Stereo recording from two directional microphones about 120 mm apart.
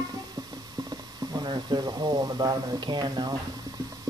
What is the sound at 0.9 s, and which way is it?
Speech, 35° right (ahead or behind).